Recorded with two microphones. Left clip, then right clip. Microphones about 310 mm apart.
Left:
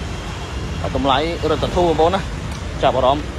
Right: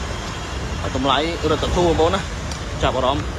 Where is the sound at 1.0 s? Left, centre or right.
Centre.